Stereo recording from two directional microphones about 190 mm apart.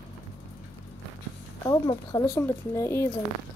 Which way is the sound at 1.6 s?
15° left (ahead or behind).